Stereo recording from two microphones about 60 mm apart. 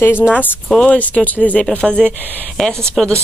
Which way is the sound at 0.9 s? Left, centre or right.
Left.